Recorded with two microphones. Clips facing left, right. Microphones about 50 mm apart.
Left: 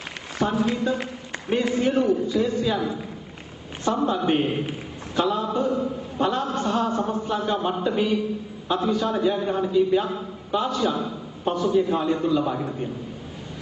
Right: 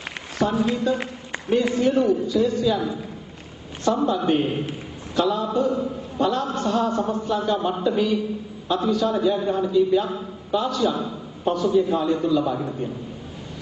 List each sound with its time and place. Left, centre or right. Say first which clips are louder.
0.4 s a man's voice: right 1 dB; centre
3.8 s a man's voice: right 2 dB; left